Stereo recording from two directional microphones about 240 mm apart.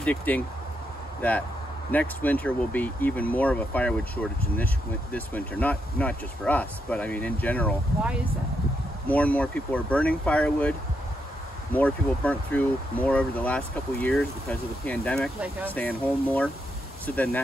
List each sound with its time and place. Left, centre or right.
0.0 s speech: centre
1.9 s speech: centre
9.0 s speech: centre